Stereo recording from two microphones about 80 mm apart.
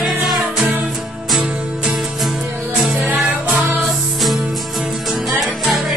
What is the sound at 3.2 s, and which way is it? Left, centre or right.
Music, centre.